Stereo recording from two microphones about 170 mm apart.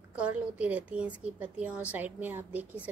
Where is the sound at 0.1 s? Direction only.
10° right (ahead or behind).